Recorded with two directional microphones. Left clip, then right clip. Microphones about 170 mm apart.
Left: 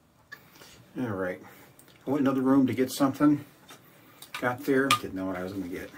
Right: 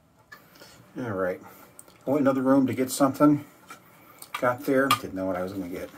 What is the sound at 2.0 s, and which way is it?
Speech, 5° right (ahead or behind).